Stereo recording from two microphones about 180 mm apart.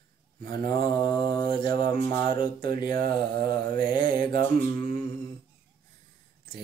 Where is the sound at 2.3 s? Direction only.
25° left (ahead or behind).